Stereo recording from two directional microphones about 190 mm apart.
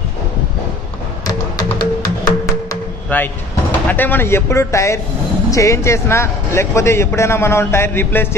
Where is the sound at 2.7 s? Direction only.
10° left (ahead or behind).